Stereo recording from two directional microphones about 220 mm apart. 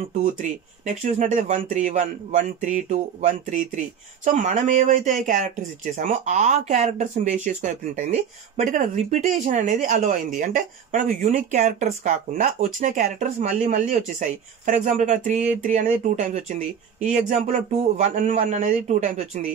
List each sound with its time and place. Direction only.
0.2 s speech: 35° right (ahead or behind)